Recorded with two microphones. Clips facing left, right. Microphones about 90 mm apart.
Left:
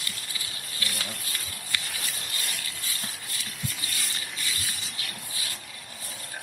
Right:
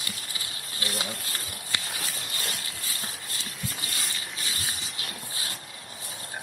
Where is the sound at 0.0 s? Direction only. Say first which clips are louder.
Right 1 dB; 30° right (ahead or behind).